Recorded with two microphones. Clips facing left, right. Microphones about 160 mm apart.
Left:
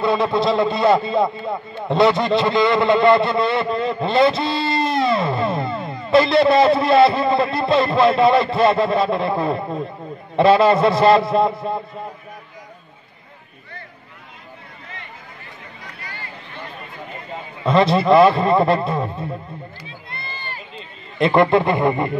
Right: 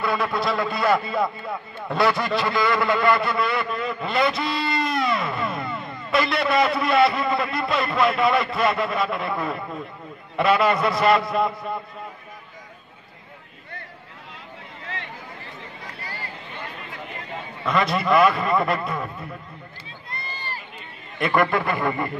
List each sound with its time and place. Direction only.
0.0 s a man's voice: 25° left (ahead or behind)
17.6 s a man's voice: 30° left (ahead or behind)
20.1 s run: 40° right (ahead or behind)
21.2 s a man's voice: 25° left (ahead or behind)